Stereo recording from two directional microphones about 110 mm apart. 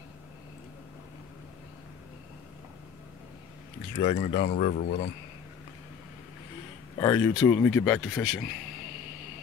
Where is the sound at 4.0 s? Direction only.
75° left (ahead or behind).